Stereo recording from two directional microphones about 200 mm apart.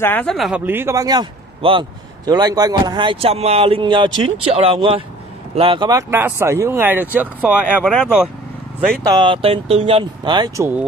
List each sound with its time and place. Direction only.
0.0 s a man's voice: 10° left (ahead or behind); by 7.2 s 10° right (ahead or behind)
7.6 s speech: 10° left (ahead or behind)
9.0 s a man's voice: 20° right (ahead or behind)